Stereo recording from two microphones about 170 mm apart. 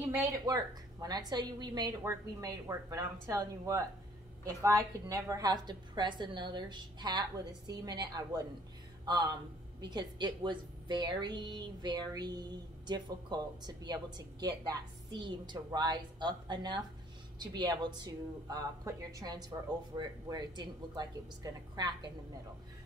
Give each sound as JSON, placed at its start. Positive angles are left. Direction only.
{"t": 0.5, "sound": "a woman's voice", "side_deg": -20}